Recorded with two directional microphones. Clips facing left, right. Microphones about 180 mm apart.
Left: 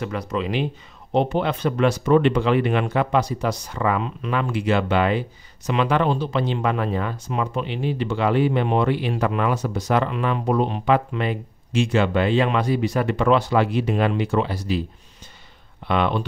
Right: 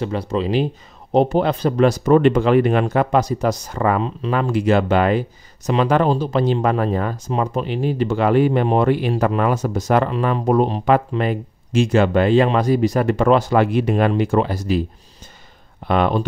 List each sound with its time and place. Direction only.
0.0 s speech: 30° right (ahead or behind); by 14.8 s 45° right (ahead or behind)
15.8 s speech: 45° right (ahead or behind)